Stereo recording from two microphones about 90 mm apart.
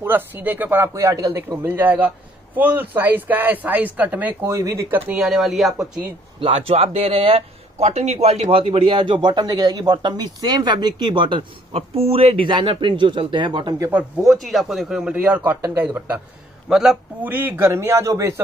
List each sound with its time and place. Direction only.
0.0 s a man's voice: 25° right (ahead or behind)
0.9 s speech: 40° right (ahead or behind)
1.6 s a man's voice: 25° right (ahead or behind)
4.5 s speech: 35° right (ahead or behind)
5.1 s speech: 5° right (ahead or behind)
6.4 s speech: 90° right
8.5 s a man's voice: 90° right; by 13.7 s 60° right (ahead or behind)
14.2 s speech: centre (ahead or behind); by 15.6 s 15° right (ahead or behind)
15.6 s a man's voice: 25° right (ahead or behind)
16.6 s a man's voice: 5° right (ahead or behind)
17.2 s a man's voice: 20° right (ahead or behind)